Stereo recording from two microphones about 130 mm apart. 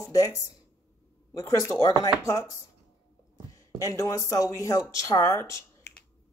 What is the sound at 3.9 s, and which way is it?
Speech, 20° left (ahead or behind).